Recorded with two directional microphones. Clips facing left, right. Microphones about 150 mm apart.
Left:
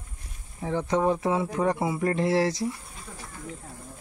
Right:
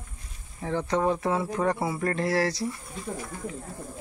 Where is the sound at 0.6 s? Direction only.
15° left (ahead or behind).